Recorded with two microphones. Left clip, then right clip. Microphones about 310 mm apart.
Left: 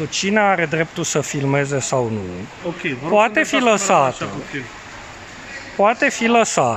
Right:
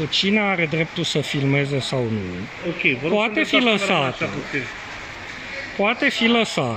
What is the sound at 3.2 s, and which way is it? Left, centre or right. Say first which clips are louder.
Speech: left 3 dB; left.